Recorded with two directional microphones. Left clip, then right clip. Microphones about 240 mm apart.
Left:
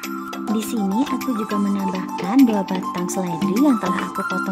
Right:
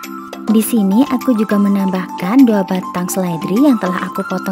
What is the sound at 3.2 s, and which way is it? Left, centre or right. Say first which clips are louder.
Speech: right 6 dB; right.